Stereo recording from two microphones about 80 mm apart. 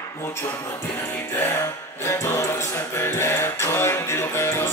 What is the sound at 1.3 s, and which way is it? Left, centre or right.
Music, left.